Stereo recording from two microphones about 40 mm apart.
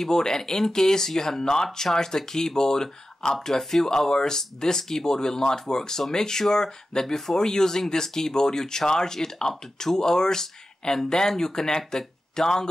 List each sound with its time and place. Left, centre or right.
0.0 s speech: centre